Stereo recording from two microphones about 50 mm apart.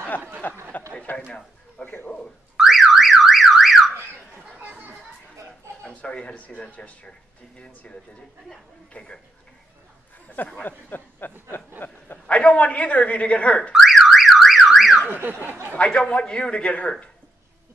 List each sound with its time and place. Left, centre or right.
0.4 s speech: left
2.5 s car alarm: centre
4.6 s chatter: right
5.8 s a woman's voice: left
10.2 s speech: left
12.3 s a woman's voice: left
13.6 s speech: centre
13.8 s car alarm: centre
15.7 s a woman's voice: left